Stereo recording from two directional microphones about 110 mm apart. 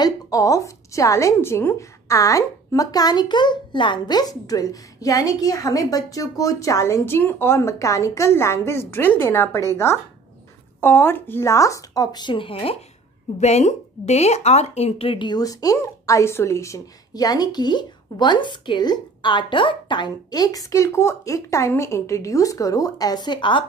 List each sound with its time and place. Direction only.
0.0 s a woman's voice: 35° left (ahead or behind); by 12.7 s 55° left (ahead or behind)
13.4 s speech: 85° left; by 23.6 s 45° left (ahead or behind)